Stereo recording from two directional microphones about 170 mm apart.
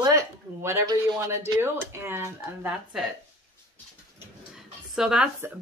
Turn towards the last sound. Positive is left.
turn(degrees=-5)  # may be behind; listen again after turning